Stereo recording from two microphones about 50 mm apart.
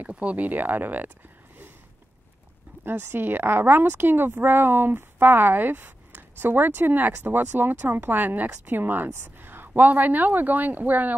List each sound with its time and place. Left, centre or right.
0.1 s speech: right
2.8 s speech: right